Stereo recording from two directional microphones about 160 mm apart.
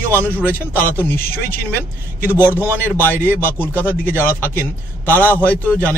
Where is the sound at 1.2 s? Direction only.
70° left (ahead or behind).